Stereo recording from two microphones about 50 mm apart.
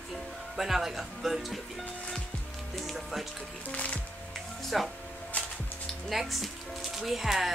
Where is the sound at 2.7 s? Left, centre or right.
Centre.